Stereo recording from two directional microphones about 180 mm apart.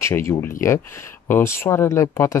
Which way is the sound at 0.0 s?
15° left (ahead or behind).